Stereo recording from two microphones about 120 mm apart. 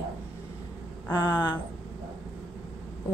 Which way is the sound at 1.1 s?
35° left (ahead or behind).